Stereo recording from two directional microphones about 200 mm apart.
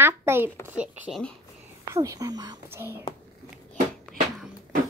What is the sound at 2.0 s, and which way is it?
Speech, 20° right (ahead or behind).